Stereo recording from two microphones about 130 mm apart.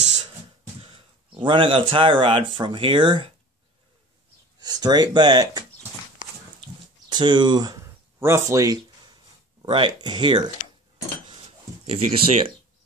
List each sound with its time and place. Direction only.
0.8 s speech: 45° right (ahead or behind)
4.6 s speech: 30° right (ahead or behind)
7.1 s a sound: 35° right (ahead or behind)
9.6 s speech: 40° right (ahead or behind)
11.8 s speech: 50° right (ahead or behind)